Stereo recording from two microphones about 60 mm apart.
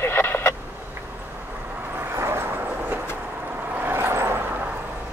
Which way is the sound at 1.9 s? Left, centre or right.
Right.